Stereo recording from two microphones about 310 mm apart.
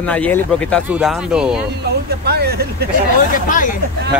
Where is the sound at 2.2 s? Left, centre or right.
Right.